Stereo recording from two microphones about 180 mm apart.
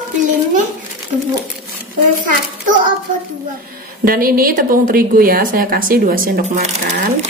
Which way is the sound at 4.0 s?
55° right (ahead or behind).